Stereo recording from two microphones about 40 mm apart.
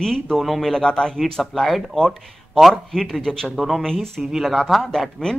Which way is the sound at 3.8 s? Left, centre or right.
Centre.